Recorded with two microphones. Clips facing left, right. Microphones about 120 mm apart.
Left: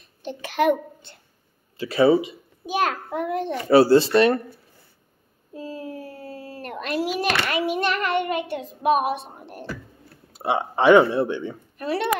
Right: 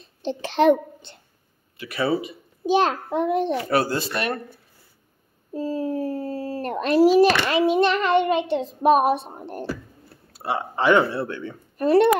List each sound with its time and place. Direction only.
0.0 s a child's voice: 30° right (ahead or behind)
1.8 s speech: 25° left (ahead or behind)
2.6 s a child's voice: 30° right (ahead or behind)
3.7 s speech: 30° left (ahead or behind)
5.5 s a child's voice: 40° right (ahead or behind)
10.3 s speech: 20° left (ahead or behind)
11.8 s speech: 45° right (ahead or behind)